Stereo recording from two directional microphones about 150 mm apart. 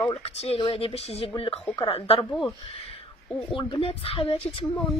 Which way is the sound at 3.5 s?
35° left (ahead or behind).